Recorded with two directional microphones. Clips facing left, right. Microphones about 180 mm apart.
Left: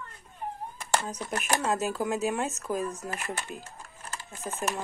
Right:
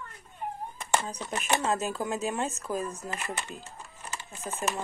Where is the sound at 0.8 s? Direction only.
Centre (ahead or behind).